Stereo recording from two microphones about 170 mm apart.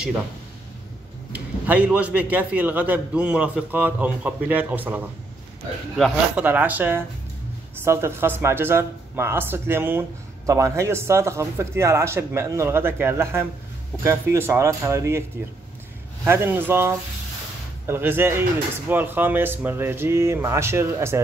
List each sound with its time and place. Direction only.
1.3 s speech: 10° right (ahead or behind)
16.3 s speech: 10° right (ahead or behind)